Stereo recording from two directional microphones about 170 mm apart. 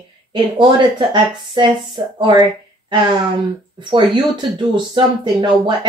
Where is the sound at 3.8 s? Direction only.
25° right (ahead or behind).